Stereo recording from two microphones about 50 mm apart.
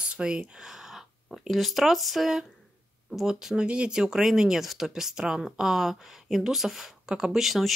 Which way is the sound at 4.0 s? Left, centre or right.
Centre.